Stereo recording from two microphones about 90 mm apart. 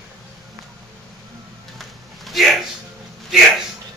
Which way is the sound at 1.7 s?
Centre (ahead or behind).